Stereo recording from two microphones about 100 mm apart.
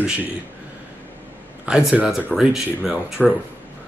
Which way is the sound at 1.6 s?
10° right (ahead or behind).